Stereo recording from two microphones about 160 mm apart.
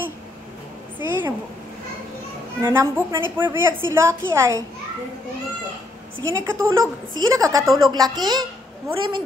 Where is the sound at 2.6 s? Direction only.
15° right (ahead or behind).